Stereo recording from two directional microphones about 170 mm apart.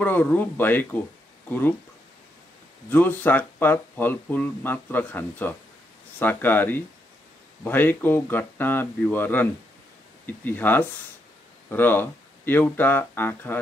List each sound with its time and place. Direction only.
0.0 s speech: 10° left (ahead or behind)
2.9 s speech: 10° left (ahead or behind)